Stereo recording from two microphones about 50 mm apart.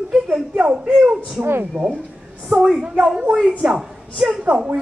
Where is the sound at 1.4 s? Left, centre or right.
Right.